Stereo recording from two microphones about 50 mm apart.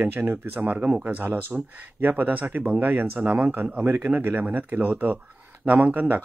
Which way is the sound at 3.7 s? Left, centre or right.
Right.